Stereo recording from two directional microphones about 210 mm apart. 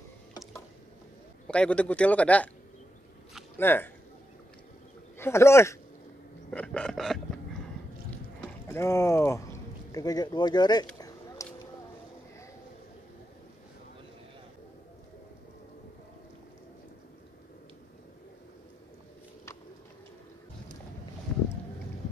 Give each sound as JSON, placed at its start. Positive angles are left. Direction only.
{"t": 1.5, "sound": "speech", "side_deg": 5}
{"t": 3.5, "sound": "speech", "side_deg": 10}
{"t": 5.2, "sound": "speech", "side_deg": 10}
{"t": 6.5, "sound": "a sound", "side_deg": 5}
{"t": 8.6, "sound": "speech", "side_deg": 10}
{"t": 11.4, "sound": "a sound", "side_deg": 15}